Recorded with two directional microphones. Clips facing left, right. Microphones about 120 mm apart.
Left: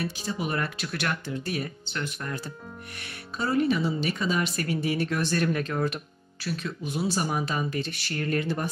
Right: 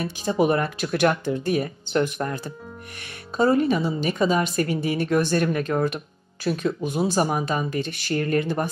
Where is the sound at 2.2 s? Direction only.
30° right (ahead or behind).